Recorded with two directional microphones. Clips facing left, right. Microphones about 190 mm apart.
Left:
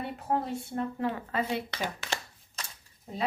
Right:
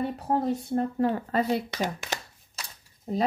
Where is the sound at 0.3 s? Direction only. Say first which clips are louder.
Right 4 dB; 35° right (ahead or behind).